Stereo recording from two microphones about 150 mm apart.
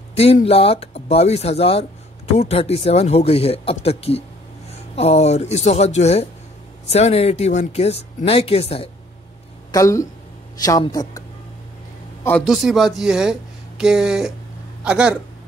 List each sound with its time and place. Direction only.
0.1 s speech: 45° left (ahead or behind)
9.7 s speech: 20° left (ahead or behind)
12.2 s speech: 10° left (ahead or behind)
12.4 s speech: centre (ahead or behind)